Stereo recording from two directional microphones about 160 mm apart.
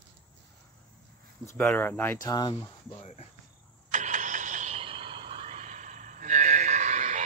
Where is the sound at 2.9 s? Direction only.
40° left (ahead or behind).